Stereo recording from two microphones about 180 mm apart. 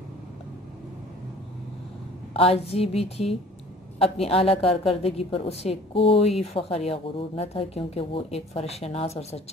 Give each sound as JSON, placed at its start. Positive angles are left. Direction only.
{"t": 2.3, "sound": "speech", "side_deg": 30}